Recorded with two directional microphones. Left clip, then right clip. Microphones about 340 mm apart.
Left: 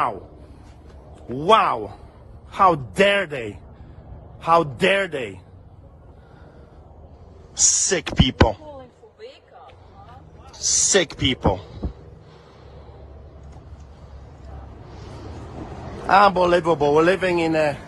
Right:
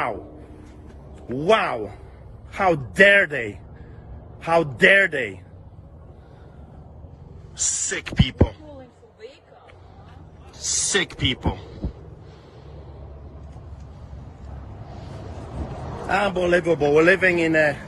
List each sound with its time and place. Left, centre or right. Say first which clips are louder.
1.2 s a man's voice: left 3 dB; centre
7.6 s speech: left 6 dB; centre
10.5 s a man's voice: left 4 dB; centre
16.1 s a man's voice: left 6 dB; centre